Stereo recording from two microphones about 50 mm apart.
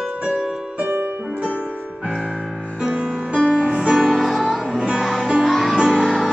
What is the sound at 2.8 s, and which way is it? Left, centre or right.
Music, centre.